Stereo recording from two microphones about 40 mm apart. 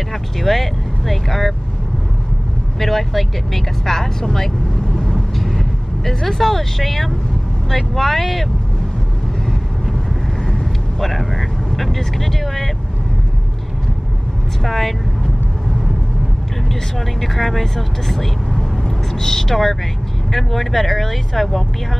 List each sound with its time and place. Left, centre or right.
0.1 s vehicle: centre
2.8 s speech: centre
4.9 s vehicle: centre
5.4 s speech: centre
10.4 s speech: centre
14.6 s speech: centre
17.2 s speech: centre